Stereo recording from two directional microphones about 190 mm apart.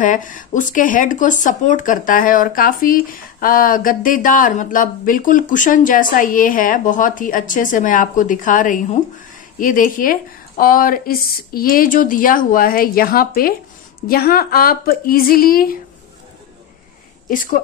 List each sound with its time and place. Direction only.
0.0 s speech: 45° left (ahead or behind)
17.3 s speech: 45° left (ahead or behind)